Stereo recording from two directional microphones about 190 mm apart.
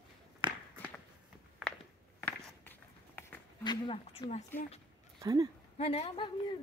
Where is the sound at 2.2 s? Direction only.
10° left (ahead or behind).